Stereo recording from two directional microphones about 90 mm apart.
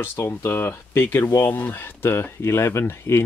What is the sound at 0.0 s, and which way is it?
Speech, 25° left (ahead or behind).